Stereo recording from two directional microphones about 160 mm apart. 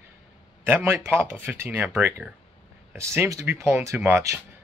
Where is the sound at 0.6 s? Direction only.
15° right (ahead or behind).